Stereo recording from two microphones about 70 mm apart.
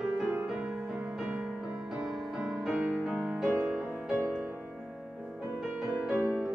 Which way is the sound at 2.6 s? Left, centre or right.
Centre.